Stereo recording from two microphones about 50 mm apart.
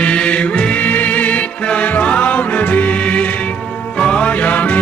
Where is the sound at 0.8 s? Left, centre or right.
Left.